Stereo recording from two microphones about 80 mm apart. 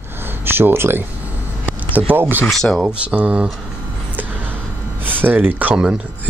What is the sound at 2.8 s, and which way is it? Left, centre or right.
Speech, centre.